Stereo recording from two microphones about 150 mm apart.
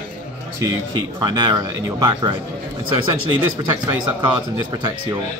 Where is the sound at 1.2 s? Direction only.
30° right (ahead or behind).